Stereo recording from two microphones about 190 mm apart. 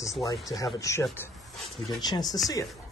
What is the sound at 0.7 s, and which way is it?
Speech, 15° left (ahead or behind).